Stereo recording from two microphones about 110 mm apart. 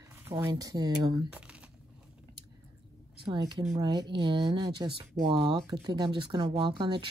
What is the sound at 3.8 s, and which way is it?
Speech, 40° right (ahead or behind).